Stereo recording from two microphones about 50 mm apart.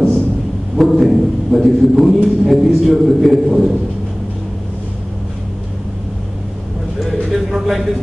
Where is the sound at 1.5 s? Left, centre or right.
Centre.